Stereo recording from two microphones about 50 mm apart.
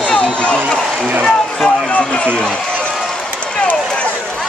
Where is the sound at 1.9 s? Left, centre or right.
Left.